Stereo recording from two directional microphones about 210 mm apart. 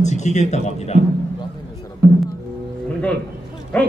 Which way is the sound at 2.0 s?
15° right (ahead or behind).